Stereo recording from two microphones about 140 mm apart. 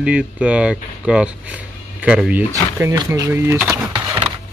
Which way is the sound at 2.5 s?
20° right (ahead or behind).